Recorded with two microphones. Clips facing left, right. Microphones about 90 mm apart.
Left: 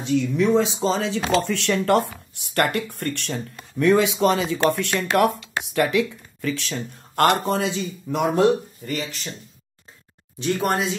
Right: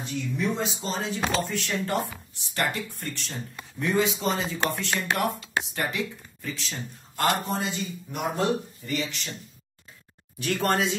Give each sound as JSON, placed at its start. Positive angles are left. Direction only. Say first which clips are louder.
{"t": 0.0, "sound": "speech", "louder": "left 9 dB", "side_deg": 90}
{"t": 8.8, "sound": "speech", "louder": "left 2 dB", "side_deg": 45}
{"t": 10.4, "sound": "speech", "louder": "left 4 dB", "side_deg": 20}
{"t": 10.7, "sound": "speech", "louder": "left 1 dB", "side_deg": 0}